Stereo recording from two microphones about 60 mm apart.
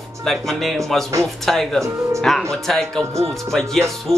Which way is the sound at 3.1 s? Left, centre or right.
Right.